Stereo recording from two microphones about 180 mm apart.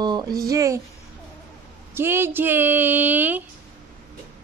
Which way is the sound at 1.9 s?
15° right (ahead or behind).